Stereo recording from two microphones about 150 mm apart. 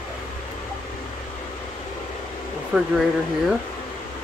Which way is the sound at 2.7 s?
5° right (ahead or behind).